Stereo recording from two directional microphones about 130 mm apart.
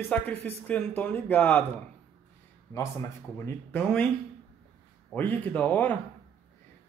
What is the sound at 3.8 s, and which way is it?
Speech, 5° left (ahead or behind).